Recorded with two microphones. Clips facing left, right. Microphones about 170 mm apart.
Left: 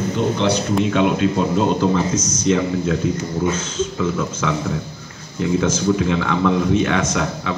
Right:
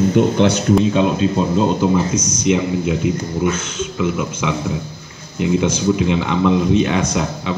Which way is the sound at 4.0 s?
15° right (ahead or behind).